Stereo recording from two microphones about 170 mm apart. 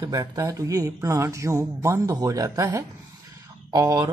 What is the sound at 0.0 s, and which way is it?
Speech, 20° right (ahead or behind).